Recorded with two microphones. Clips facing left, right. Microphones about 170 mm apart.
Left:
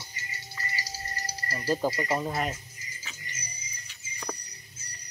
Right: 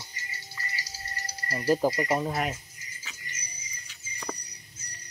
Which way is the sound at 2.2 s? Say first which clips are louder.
Right 1 dB; 5° right (ahead or behind).